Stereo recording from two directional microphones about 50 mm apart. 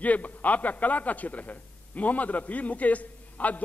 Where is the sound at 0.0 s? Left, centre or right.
Left.